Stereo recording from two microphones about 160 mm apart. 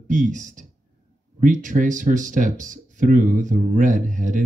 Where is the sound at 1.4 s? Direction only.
55° right (ahead or behind).